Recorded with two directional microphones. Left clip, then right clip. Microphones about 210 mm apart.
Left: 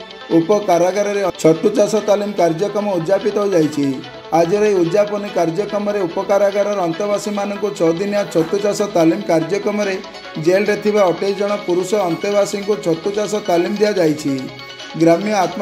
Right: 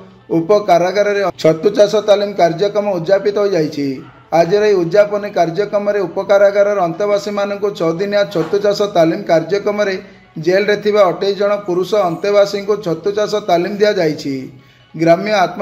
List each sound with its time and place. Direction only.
0.5 s speech: 35° left (ahead or behind)